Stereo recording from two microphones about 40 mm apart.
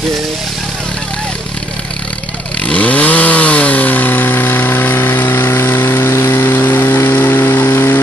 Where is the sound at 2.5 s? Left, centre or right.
Left.